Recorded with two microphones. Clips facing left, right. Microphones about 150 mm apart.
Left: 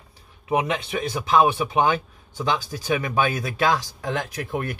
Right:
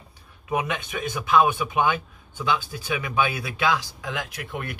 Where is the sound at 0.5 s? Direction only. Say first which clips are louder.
Left 4 dB; 30° left (ahead or behind).